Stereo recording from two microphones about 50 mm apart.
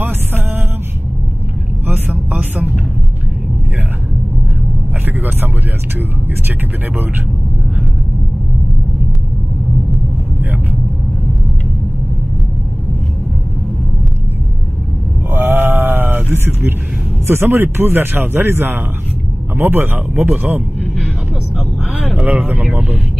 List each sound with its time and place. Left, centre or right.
2.0 s a sound: right
5.0 s vehicle: right
15.3 s sheep: right
17.3 s a man's voice: right
21.5 s vehicle: centre
22.1 s speech: right